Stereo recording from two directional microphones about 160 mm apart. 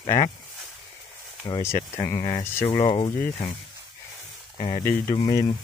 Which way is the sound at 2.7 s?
35° left (ahead or behind).